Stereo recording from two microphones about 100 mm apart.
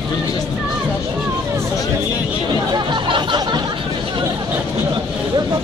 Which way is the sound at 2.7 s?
50° right (ahead or behind).